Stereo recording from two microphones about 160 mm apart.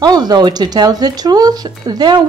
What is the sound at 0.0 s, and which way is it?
Speech, 25° right (ahead or behind).